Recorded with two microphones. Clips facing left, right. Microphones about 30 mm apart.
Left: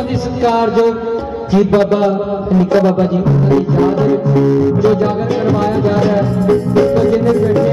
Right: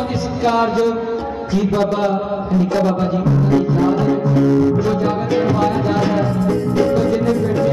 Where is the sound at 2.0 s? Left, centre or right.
Centre.